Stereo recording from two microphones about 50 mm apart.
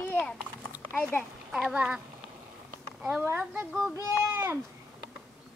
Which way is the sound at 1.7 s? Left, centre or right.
Right.